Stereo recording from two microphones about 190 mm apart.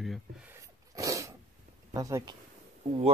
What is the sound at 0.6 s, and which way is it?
Sneeze, 15° right (ahead or behind).